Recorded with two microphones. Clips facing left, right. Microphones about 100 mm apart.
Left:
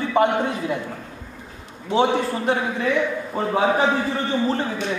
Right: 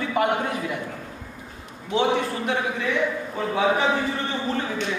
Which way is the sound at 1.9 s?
35° left (ahead or behind).